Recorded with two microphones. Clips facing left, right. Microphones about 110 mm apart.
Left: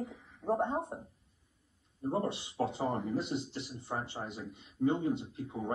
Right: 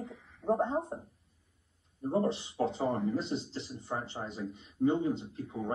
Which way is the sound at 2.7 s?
15° left (ahead or behind).